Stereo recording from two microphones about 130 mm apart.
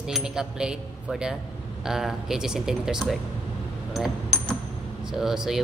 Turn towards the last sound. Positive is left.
turn(degrees=-5)  # may be behind; listen again after turning